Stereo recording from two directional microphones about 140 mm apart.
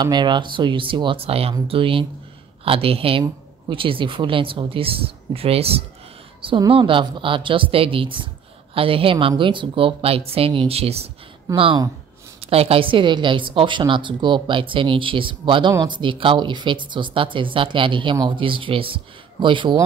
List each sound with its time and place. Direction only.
0.0 s a woman's voice: 30° right (ahead or behind)